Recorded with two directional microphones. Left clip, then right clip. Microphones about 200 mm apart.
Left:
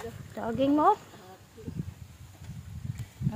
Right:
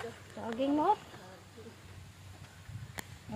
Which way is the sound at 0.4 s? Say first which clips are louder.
Left 6 dB; 35° left (ahead or behind).